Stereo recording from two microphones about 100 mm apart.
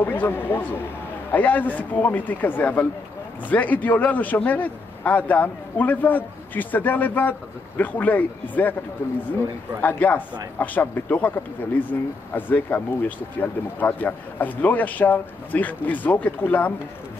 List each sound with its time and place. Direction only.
0.0 s a man's voice: 20° left (ahead or behind)
9.8 s a man's voice: 15° left (ahead or behind)